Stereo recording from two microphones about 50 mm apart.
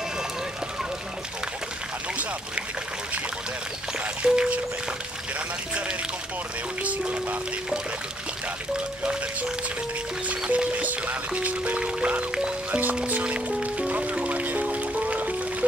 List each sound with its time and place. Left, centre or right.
4.2 s music: right
6.8 s music: right
10.5 s music: right